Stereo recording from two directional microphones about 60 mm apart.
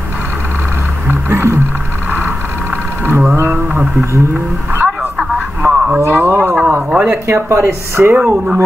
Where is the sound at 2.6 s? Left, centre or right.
Right.